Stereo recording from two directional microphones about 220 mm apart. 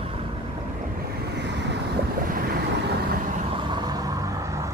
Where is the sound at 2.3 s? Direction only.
40° right (ahead or behind).